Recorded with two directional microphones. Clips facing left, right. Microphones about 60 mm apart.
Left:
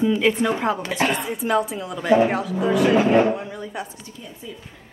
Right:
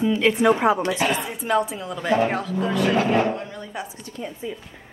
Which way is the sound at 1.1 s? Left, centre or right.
Centre.